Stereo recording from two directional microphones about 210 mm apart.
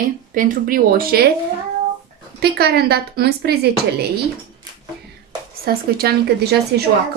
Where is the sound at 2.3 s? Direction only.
50° right (ahead or behind).